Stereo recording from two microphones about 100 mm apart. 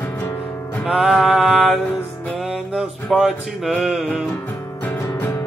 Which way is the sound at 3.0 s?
Centre (ahead or behind).